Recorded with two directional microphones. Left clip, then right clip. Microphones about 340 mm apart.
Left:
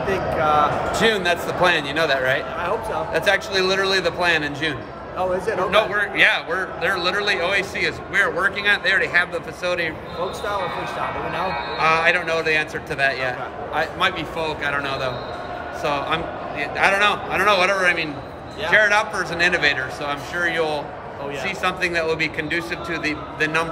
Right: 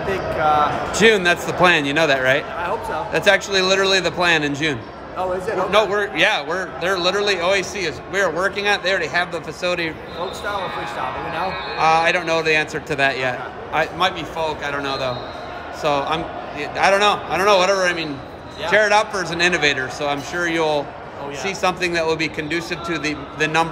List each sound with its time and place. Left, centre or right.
0.1 s speech: centre
0.9 s a man's voice: centre
11.3 s a man's voice: centre